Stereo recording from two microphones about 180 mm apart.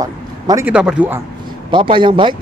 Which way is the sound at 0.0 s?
20° right (ahead or behind).